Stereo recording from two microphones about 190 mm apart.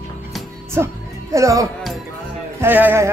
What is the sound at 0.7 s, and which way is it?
Music, 15° right (ahead or behind).